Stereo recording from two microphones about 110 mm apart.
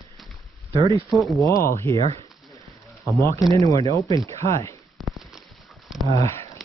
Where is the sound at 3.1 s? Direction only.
25° left (ahead or behind).